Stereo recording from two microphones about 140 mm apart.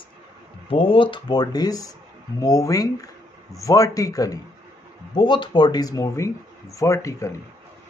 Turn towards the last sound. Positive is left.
turn(degrees=20)  # may be behind; listen again after turning